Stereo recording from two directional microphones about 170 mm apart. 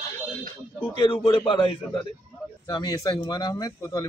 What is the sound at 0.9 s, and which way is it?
A man's voice, 30° left (ahead or behind).